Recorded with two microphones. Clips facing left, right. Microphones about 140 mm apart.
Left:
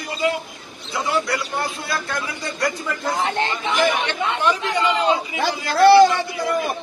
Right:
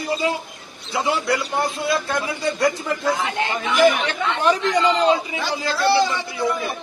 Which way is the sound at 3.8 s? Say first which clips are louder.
Right 5 dB; 35° right (ahead or behind).